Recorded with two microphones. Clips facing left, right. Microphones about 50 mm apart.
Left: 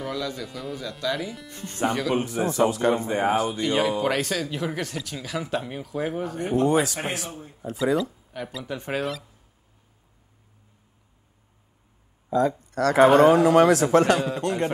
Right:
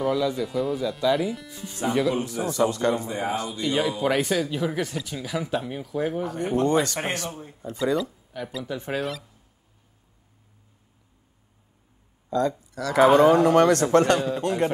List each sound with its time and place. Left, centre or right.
0.0 s speech: centre
1.5 s speech: left
1.9 s speech: centre
2.4 s speech: left
2.8 s speech: left
3.1 s speech: left
3.6 s speech: centre
12.3 s speech: centre
12.5 s speech: left
13.3 s speech: centre